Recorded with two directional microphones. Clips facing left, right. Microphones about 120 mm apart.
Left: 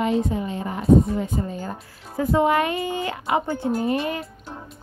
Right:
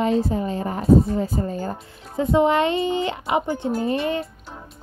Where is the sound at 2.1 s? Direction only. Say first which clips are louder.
Right 1 dB; 25° right (ahead or behind).